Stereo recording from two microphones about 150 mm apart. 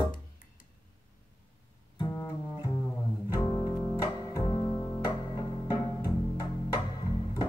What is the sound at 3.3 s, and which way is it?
Music, 25° left (ahead or behind).